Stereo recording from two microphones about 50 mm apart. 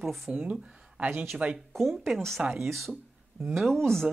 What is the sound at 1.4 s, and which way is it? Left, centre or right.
Speech, right.